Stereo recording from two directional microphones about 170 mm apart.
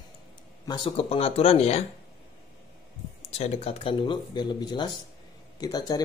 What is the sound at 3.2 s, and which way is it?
Speech, 40° left (ahead or behind).